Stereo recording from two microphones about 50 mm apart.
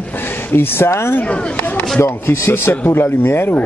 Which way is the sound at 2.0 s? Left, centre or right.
Left.